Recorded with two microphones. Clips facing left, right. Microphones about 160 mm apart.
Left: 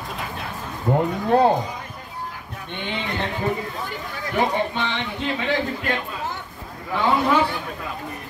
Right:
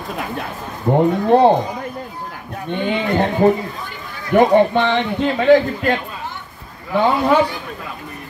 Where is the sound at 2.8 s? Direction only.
45° right (ahead or behind).